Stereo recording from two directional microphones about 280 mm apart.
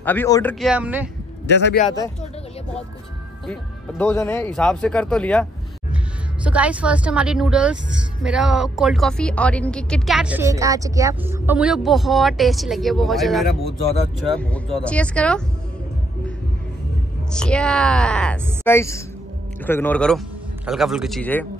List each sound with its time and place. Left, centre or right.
0.0 s a woman's voice: centre
1.5 s speech: left
4.0 s a woman's voice: centre
17.3 s a woman's voice: centre